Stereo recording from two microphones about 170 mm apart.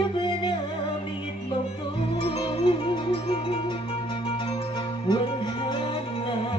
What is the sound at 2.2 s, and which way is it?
Music, 30° left (ahead or behind).